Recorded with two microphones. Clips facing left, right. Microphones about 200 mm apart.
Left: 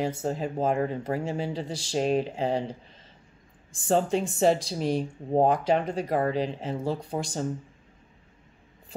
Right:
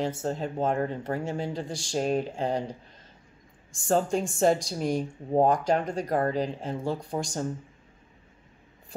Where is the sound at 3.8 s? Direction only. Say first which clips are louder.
Left 1 dB; centre (ahead or behind).